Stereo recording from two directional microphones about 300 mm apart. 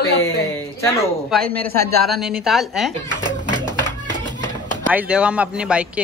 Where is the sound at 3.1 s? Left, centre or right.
Centre.